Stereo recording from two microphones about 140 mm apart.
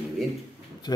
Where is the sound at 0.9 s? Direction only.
30° left (ahead or behind).